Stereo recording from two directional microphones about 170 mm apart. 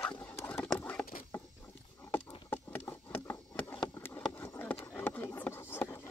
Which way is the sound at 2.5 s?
10° left (ahead or behind).